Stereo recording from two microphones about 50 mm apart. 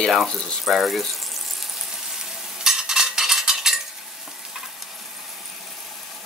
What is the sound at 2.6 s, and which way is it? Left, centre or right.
Stir, centre.